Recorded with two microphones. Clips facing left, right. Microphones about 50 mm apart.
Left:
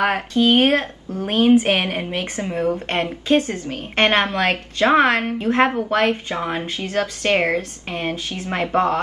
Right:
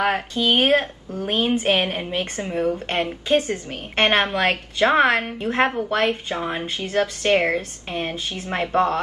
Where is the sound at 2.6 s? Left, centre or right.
Centre.